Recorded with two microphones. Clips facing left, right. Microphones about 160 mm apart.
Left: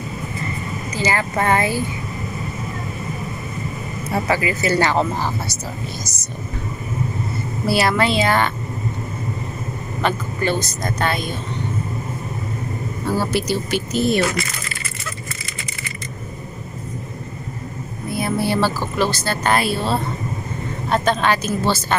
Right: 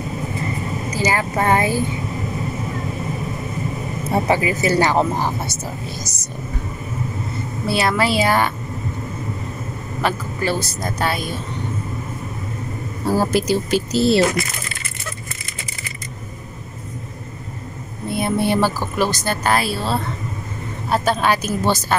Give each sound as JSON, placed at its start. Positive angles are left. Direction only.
{"t": 0.9, "sound": "speech", "side_deg": -10}
{"t": 4.1, "sound": "speech", "side_deg": -15}
{"t": 7.6, "sound": "speech", "side_deg": 0}
{"t": 10.0, "sound": "speech", "side_deg": -5}
{"t": 13.0, "sound": "speech", "side_deg": -40}
{"t": 18.0, "sound": "speech", "side_deg": -25}
{"t": 19.4, "sound": "a woman's voice", "side_deg": 0}